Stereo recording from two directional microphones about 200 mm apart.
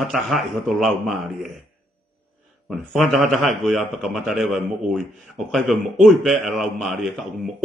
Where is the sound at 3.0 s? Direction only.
Centre (ahead or behind).